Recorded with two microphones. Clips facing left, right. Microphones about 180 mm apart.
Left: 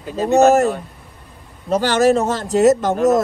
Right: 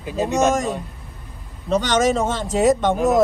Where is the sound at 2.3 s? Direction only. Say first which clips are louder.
Left 4 dB; centre (ahead or behind).